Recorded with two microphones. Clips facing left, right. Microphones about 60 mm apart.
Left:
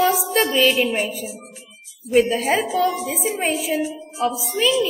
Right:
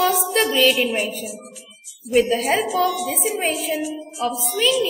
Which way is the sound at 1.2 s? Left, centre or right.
Left.